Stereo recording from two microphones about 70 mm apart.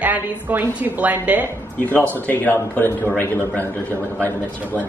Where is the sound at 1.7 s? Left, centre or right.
Left.